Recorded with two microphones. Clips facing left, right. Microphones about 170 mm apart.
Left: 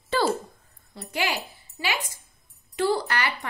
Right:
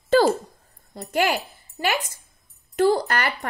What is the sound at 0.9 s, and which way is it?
A woman's voice, 50° right (ahead or behind).